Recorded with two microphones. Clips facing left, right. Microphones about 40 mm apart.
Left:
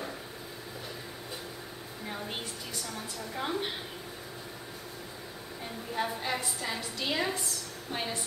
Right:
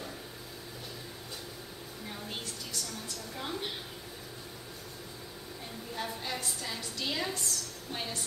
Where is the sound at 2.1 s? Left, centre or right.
Centre.